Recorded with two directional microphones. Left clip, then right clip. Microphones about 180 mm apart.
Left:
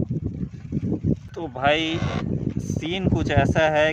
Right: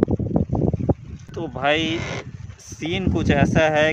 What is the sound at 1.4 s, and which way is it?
Speech, centre (ahead or behind).